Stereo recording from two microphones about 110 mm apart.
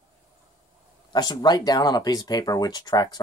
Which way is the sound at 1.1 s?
35° left (ahead or behind).